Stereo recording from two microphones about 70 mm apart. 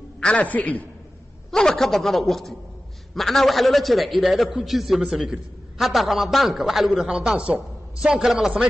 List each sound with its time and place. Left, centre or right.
0.2 s a man's voice: centre
1.5 s a man's voice: centre
7.2 s speech: centre